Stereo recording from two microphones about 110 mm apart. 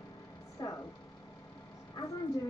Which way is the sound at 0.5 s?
35° left (ahead or behind).